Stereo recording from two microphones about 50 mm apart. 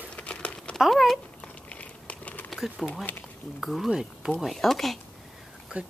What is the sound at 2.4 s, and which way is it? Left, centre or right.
Bird, centre.